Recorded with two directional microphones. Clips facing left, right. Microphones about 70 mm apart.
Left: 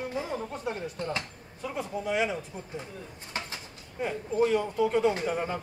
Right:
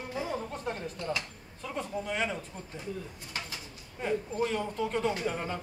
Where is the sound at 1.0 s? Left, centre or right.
Left.